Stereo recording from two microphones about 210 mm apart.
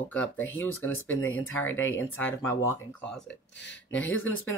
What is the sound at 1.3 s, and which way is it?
Speech, 75° left (ahead or behind).